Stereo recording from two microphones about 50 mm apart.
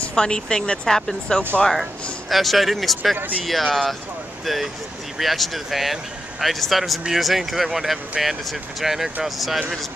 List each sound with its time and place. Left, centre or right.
0.1 s a woman's voice: centre
5.2 s speech: centre